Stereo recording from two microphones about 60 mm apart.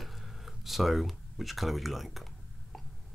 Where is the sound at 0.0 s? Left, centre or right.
Centre.